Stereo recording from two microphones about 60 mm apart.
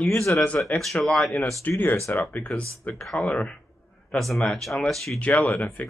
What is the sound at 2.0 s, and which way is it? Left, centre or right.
Speech, left.